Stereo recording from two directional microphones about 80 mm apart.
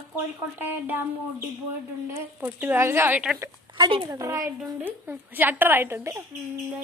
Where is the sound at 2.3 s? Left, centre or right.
Right.